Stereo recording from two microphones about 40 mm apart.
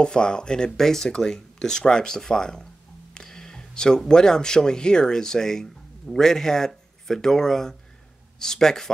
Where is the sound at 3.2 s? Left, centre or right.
Centre.